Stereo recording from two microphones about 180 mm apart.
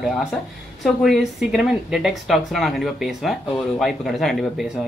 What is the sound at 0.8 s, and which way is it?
Speech, centre (ahead or behind).